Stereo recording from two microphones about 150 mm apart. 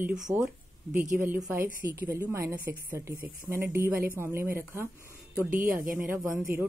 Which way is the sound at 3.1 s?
75° right (ahead or behind).